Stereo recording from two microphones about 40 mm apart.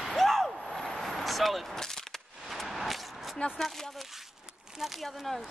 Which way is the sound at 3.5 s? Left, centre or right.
Centre.